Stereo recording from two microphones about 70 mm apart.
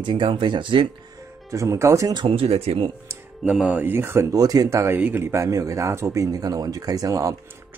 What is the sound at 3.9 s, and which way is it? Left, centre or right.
Speech, right.